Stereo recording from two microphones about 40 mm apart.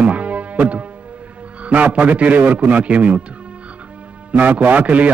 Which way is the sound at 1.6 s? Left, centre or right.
Right.